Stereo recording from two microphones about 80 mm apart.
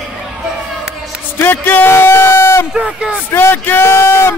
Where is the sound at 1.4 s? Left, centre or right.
Left.